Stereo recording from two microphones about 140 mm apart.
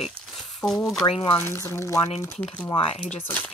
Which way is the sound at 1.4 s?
20° left (ahead or behind).